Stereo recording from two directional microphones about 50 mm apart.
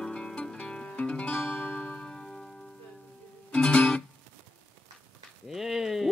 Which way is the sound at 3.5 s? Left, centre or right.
Left.